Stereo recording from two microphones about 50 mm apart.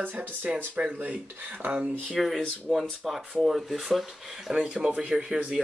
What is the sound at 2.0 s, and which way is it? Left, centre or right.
Speech, centre.